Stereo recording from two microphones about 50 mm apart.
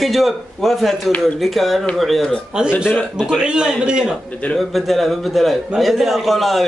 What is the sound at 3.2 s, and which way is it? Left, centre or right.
Speech, centre.